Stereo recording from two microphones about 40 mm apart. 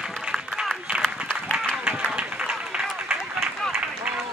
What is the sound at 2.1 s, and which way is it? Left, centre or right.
Run, right.